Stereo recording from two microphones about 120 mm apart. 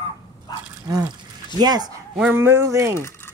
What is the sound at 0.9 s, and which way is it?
Speech, 30° right (ahead or behind).